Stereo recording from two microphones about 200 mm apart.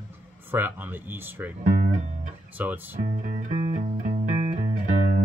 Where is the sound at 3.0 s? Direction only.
35° right (ahead or behind).